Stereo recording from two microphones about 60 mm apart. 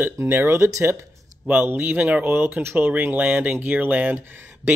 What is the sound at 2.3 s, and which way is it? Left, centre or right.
Speech, right.